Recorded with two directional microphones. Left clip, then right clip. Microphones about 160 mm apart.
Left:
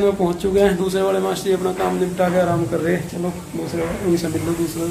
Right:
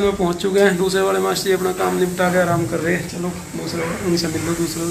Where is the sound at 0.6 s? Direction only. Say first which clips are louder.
Right 2 dB; 15° right (ahead or behind).